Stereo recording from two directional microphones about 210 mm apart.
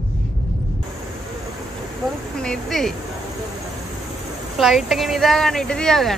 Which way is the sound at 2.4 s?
5° left (ahead or behind).